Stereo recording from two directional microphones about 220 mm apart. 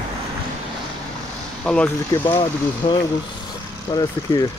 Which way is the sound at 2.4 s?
20° left (ahead or behind).